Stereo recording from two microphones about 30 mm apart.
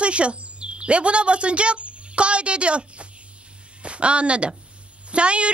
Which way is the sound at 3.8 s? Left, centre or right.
Right.